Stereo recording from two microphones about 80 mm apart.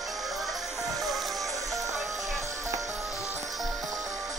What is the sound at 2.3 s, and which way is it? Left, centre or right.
Music, right.